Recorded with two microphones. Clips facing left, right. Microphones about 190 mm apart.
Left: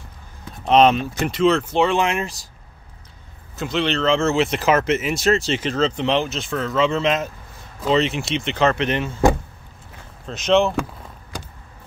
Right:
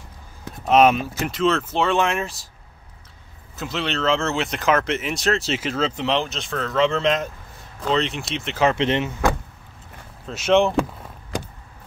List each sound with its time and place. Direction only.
0.7 s speech: 5° right (ahead or behind)
3.5 s speech: centre (ahead or behind)
8.7 s speech: 25° right (ahead or behind)
10.2 s speech: 10° right (ahead or behind)